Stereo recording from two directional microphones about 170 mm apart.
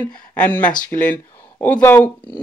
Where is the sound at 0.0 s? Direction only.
10° left (ahead or behind).